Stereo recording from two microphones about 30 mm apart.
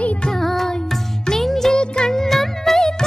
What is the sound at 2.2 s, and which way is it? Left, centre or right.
Music, centre.